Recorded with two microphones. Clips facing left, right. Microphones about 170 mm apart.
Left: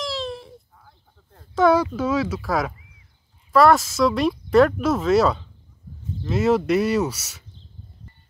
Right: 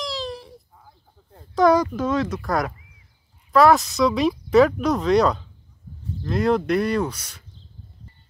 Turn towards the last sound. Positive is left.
turn(degrees=5)  # may be behind; listen again after turning